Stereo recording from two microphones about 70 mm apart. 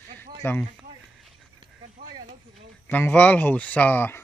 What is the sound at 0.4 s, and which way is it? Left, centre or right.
Speech, left.